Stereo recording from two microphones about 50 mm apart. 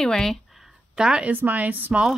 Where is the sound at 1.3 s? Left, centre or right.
Right.